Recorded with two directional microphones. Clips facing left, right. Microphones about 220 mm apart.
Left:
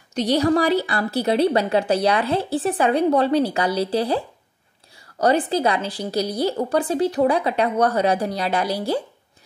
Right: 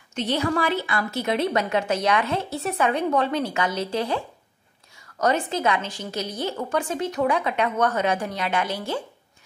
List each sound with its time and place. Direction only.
0.1 s a woman's voice: 35° left (ahead or behind)